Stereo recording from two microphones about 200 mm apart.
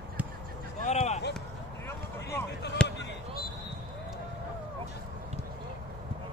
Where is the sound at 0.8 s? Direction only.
35° left (ahead or behind).